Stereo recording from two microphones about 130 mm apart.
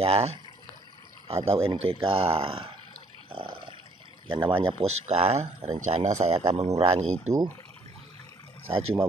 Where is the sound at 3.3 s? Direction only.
45° right (ahead or behind).